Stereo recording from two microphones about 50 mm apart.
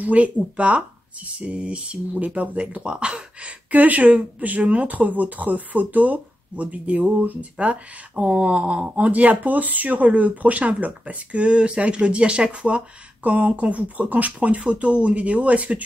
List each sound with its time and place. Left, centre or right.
0.0 s speech: right